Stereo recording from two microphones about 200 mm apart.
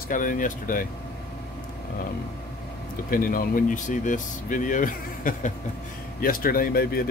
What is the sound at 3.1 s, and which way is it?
Speech, 45° left (ahead or behind).